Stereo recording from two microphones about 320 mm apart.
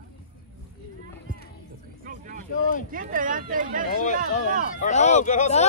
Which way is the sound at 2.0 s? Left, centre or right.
Right.